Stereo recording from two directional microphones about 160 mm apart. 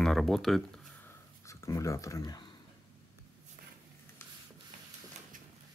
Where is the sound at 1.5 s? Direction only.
20° left (ahead or behind).